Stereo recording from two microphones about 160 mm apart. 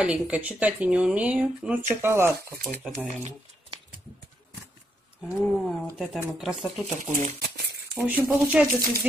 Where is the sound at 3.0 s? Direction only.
50° right (ahead or behind).